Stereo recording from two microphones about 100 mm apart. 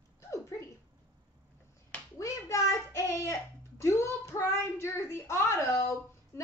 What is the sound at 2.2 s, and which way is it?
Child singing, 30° left (ahead or behind).